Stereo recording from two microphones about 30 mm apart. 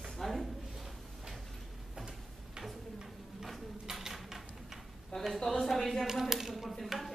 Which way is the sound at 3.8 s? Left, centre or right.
Centre.